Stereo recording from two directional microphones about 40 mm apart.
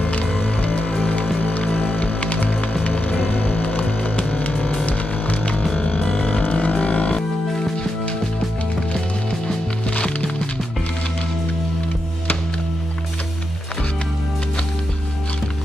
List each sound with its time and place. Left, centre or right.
0.0 s music: left
3.2 s vehicle: left
3.7 s music: left
6.4 s didgeridoo: left
9.8 s music: left